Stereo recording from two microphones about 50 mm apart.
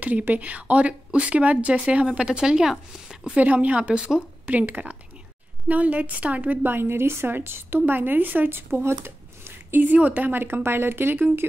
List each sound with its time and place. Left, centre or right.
0.3 s speech: right; by 3.2 s centre
3.3 s speech: right
4.5 s a woman's voice: right